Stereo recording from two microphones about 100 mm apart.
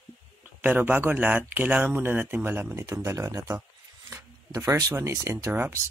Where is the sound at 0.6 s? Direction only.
20° right (ahead or behind).